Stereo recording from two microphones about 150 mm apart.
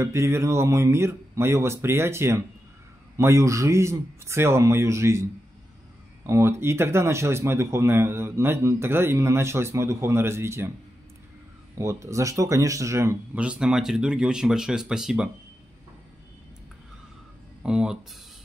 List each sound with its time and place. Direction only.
0.0 s speech: 20° right (ahead or behind)
11.8 s speech: 20° right (ahead or behind); by 15.2 s 5° right (ahead or behind)
17.6 s speech: 5° right (ahead or behind)